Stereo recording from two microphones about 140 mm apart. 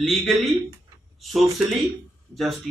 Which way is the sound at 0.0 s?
Centre (ahead or behind).